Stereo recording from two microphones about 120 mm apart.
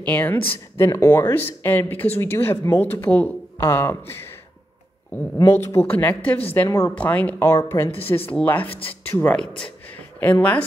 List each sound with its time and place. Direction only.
0.0 s a woman's voice: 15° left (ahead or behind)
5.4 s speech: 25° left (ahead or behind)
5.9 s a woman's voice: 15° left (ahead or behind)
8.6 s speech: 50° left (ahead or behind)
9.1 s a woman's voice: 15° left (ahead or behind)